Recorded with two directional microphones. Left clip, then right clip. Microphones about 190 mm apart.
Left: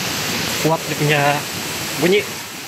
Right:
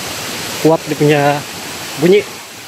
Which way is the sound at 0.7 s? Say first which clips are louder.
Right 8 dB; 35° right (ahead or behind).